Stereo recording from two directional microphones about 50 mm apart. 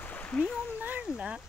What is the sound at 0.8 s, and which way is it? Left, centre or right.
Speech, right.